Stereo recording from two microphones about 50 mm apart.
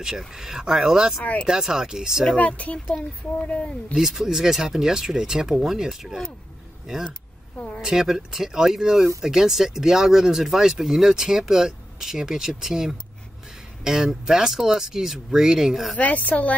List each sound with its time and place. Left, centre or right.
0.3 s speech: centre
2.3 s speech: left
3.9 s speech: centre
7.8 s speech: centre
16.0 s a woman's voice: left